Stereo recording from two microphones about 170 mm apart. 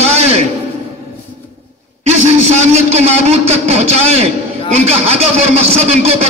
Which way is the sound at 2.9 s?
40° right (ahead or behind).